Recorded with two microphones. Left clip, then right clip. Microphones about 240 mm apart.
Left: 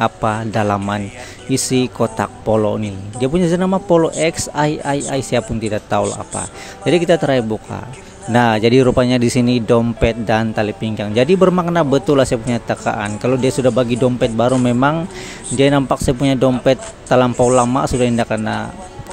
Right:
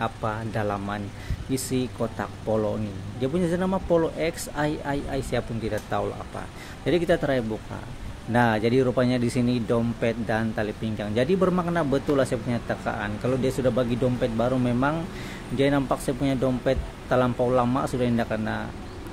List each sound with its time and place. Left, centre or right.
0.0 s speech: left